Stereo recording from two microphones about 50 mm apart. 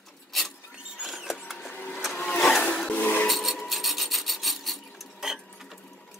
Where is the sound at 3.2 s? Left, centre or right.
Centre.